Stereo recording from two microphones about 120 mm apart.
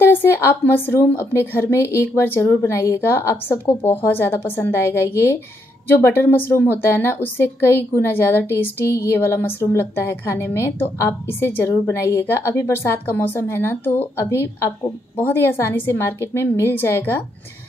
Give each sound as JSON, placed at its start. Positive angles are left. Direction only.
{"t": 0.0, "sound": "a woman's voice", "side_deg": 20}